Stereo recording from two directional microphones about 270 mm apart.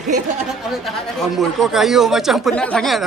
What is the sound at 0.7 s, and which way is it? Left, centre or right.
Speech, centre.